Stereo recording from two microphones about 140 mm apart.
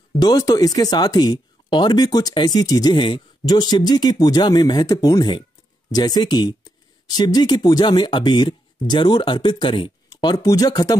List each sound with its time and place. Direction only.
0.2 s speech: 25° left (ahead or behind)
10.3 s speech: 25° left (ahead or behind)